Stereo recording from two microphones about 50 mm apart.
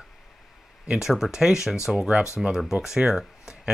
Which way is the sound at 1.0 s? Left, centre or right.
Centre.